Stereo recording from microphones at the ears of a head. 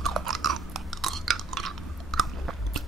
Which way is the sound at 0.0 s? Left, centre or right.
Right.